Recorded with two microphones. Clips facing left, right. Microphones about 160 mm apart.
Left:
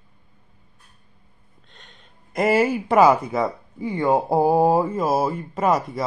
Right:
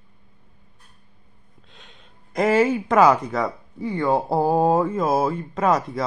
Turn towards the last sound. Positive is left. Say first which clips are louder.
# even
turn(degrees=0)  # may be behind; listen again after turning